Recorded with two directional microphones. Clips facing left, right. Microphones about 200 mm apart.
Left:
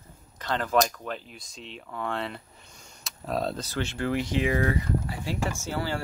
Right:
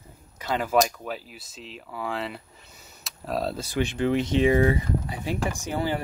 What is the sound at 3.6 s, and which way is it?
Speech, 15° right (ahead or behind).